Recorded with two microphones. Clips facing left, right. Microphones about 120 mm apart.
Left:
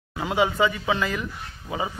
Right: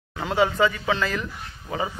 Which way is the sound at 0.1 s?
10° left (ahead or behind).